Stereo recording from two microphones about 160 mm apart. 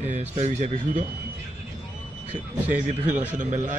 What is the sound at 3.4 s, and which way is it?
Speech, 50° right (ahead or behind).